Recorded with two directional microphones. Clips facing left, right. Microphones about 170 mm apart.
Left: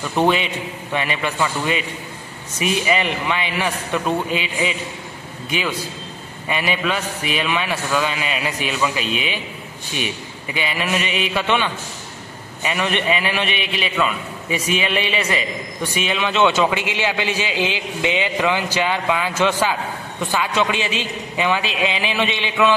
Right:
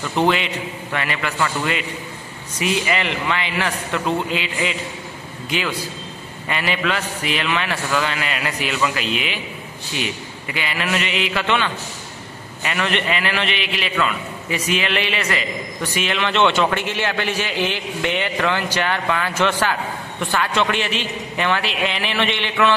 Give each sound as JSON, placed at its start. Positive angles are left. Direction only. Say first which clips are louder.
{"t": 0.0, "sound": "a man's voice", "louder": "left 1 dB", "side_deg": 15}
{"t": 6.4, "sound": "a man's voice", "louder": "left 1 dB", "side_deg": 15}
{"t": 10.5, "sound": "a man's voice", "louder": "left 1 dB", "side_deg": 15}